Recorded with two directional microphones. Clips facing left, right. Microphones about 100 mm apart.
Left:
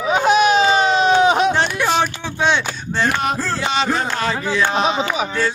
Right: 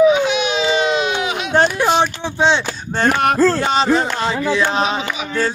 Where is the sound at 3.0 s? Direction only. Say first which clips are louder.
Right 6 dB; 60° right (ahead or behind).